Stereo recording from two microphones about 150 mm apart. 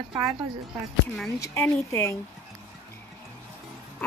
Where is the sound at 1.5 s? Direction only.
15° left (ahead or behind).